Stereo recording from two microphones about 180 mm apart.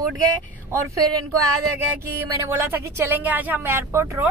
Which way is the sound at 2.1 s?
15° right (ahead or behind).